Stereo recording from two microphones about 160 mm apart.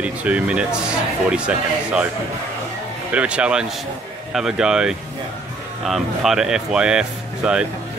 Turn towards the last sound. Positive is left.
turn(degrees=-5)  # may be behind; listen again after turning